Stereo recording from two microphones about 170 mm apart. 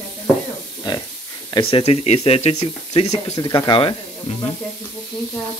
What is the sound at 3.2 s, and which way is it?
Speech, 25° left (ahead or behind).